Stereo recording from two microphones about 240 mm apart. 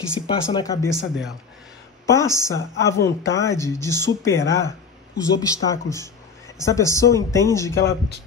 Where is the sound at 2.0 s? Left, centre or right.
Centre.